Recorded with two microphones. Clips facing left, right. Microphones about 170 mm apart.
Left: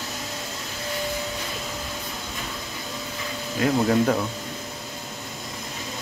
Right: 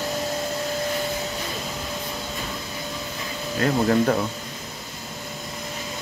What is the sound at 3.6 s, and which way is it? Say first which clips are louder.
Speech: even; 5° left (ahead or behind).